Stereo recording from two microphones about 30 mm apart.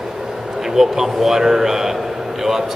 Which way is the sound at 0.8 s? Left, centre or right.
Centre.